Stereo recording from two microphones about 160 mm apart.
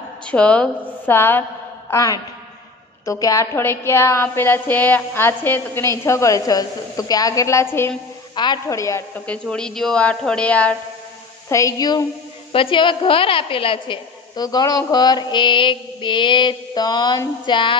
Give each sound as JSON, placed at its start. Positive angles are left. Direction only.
{"t": 0.3, "sound": "a woman's voice", "side_deg": 5}
{"t": 9.2, "sound": "a woman's voice", "side_deg": 5}
{"t": 11.4, "sound": "a woman's voice", "side_deg": 20}
{"t": 17.5, "sound": "a sound", "side_deg": 30}